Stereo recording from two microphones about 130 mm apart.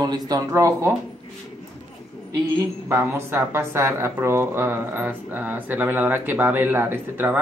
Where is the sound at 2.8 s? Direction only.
20° right (ahead or behind).